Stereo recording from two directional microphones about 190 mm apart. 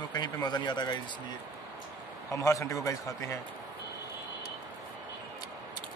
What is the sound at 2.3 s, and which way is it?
A man's voice, 15° left (ahead or behind).